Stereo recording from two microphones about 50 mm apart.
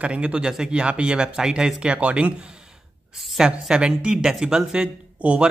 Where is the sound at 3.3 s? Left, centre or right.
Centre.